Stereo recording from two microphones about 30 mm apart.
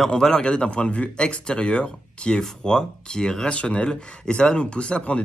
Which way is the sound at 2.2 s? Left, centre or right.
Left.